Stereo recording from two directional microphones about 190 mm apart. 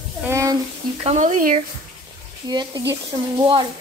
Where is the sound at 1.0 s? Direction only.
40° right (ahead or behind).